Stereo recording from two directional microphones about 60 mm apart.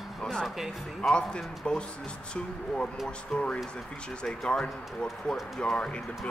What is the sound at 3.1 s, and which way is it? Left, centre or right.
Speech, centre.